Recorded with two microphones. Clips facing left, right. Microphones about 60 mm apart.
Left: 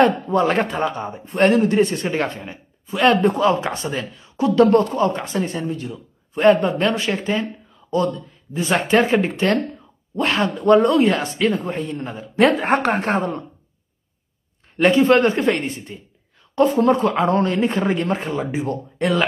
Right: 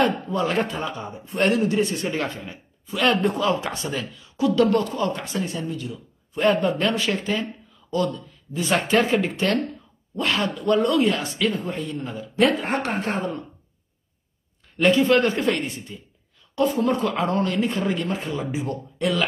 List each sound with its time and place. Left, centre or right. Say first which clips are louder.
0.0 s speech: left 6 dB; left
2.5 s speech: left 4 dB; left
12.6 s speech: left 6 dB; left
14.8 s speech: left 4 dB; left